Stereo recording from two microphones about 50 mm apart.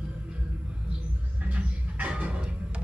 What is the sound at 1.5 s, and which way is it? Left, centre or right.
Music, right.